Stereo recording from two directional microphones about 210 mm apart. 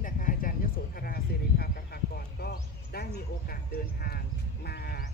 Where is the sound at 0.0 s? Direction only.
40° left (ahead or behind).